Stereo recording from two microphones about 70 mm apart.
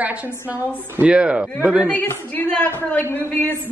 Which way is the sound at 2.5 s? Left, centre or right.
Left.